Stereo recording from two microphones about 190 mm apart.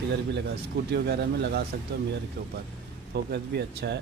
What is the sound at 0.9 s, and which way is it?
Speech, 60° right (ahead or behind).